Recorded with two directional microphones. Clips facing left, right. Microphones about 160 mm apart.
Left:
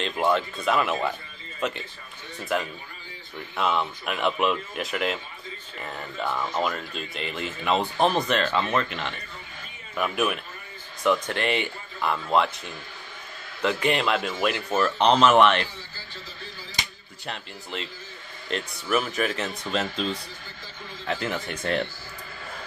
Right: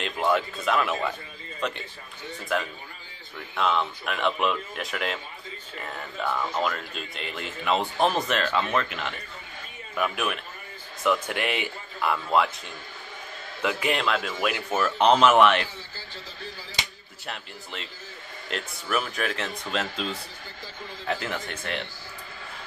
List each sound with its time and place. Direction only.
0.0 s speech: 5° left (ahead or behind)
3.5 s a man's voice: 5° left (ahead or behind)
17.3 s speech: centre (ahead or behind)